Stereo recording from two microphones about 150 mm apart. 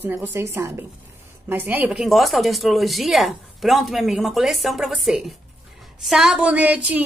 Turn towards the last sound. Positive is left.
turn(degrees=-10)  # may be behind; listen again after turning